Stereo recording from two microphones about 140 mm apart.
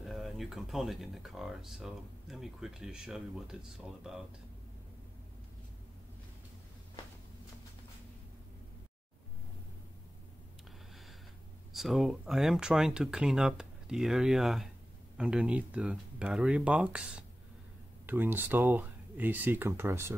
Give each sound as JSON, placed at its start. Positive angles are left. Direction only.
{"t": 0.0, "sound": "speech", "side_deg": 0}
{"t": 11.7, "sound": "speech", "side_deg": 0}